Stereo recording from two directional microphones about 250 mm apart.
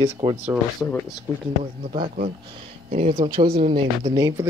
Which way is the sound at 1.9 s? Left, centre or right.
Right.